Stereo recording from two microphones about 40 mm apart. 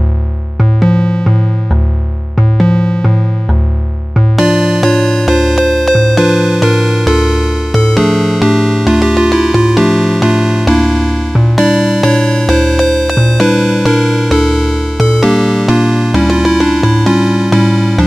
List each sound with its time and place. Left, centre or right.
0.8 s music: centre
4.4 s music: centre
6.2 s music: centre
7.7 s music: centre
12.0 s music: centre
17.6 s music: centre